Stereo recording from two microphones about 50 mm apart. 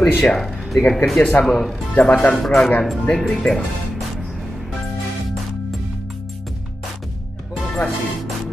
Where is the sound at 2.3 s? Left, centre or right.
Centre.